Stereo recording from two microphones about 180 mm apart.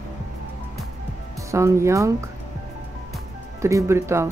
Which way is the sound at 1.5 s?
15° right (ahead or behind).